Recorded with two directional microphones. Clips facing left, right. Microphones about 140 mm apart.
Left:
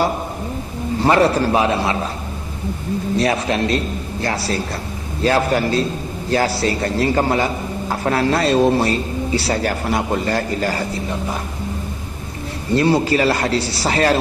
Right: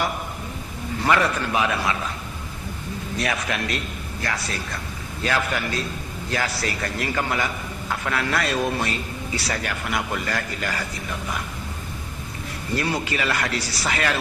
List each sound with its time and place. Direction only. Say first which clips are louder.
0.9 s a man's voice: left 7 dB; 30° left (ahead or behind)
3.2 s a man's voice: left 7 dB; 30° left (ahead or behind)
12.7 s a man's voice: left 10 dB; 30° left (ahead or behind)